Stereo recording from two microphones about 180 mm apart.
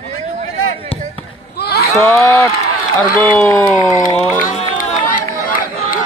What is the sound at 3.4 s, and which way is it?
Speech, 15° left (ahead or behind).